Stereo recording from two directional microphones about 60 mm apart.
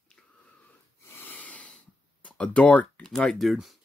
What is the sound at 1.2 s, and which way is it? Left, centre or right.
Snort, left.